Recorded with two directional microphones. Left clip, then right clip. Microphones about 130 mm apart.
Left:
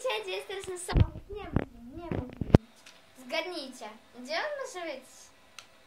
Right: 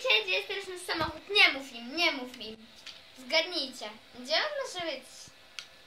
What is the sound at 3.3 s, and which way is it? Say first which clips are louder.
A woman's voice: right 5 dB; 65° left (ahead or behind).